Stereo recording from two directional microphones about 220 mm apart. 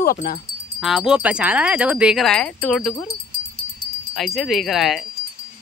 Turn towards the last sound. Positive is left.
turn(degrees=0)  # may be behind; listen again after turning